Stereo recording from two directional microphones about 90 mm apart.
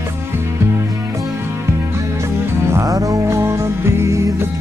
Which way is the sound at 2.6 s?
35° right (ahead or behind).